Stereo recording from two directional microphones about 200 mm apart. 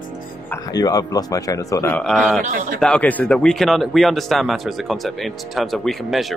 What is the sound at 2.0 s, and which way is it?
Speech, centre (ahead or behind).